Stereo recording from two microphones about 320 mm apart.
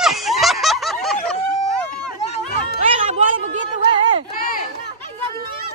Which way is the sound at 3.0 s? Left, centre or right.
Centre.